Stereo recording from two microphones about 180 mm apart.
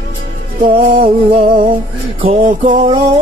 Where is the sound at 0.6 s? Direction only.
50° right (ahead or behind).